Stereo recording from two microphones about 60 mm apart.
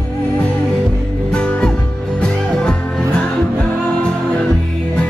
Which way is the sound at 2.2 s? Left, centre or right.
Centre.